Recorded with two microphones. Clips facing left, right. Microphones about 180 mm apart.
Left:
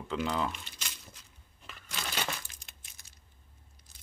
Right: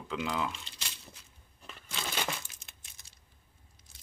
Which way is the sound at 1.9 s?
Centre (ahead or behind).